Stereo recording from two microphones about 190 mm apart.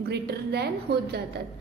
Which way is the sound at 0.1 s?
60° right (ahead or behind).